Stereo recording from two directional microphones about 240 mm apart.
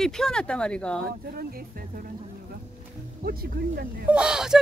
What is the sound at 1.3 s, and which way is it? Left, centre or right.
Speech, right.